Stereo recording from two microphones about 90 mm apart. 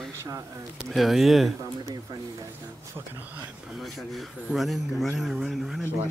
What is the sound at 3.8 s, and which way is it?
A man's voice, centre (ahead or behind).